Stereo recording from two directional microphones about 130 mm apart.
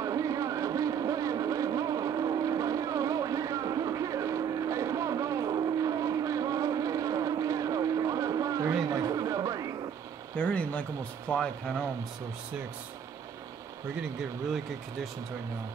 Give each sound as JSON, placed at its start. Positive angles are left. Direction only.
{"t": 0.0, "sound": "vehicle", "side_deg": -25}
{"t": 10.3, "sound": "speech", "side_deg": 10}